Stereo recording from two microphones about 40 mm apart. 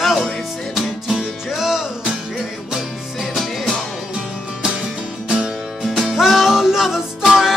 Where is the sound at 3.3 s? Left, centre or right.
Centre.